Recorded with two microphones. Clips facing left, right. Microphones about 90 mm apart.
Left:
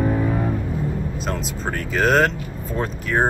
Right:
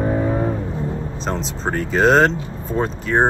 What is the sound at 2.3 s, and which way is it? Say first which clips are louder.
Speech: right 4 dB; 30° right (ahead or behind).